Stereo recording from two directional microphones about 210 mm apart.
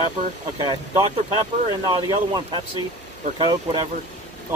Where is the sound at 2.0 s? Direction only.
20° right (ahead or behind).